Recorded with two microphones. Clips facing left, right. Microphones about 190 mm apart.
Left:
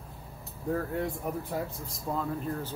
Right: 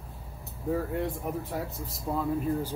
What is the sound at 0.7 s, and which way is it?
Speech, centre (ahead or behind).